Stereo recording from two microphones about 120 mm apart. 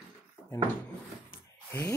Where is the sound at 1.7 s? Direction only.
20° left (ahead or behind).